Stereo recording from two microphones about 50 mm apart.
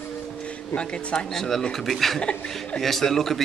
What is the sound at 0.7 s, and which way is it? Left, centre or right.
Speech, centre.